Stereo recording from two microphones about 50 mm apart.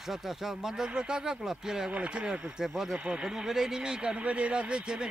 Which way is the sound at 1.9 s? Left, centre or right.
Right.